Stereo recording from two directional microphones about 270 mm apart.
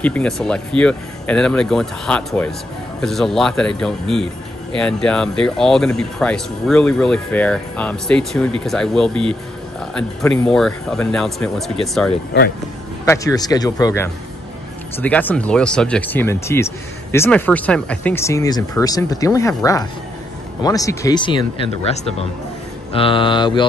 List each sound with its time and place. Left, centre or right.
0.0 s speech: centre
9.1 s speech: centre
9.8 s speech: centre
13.0 s speech: centre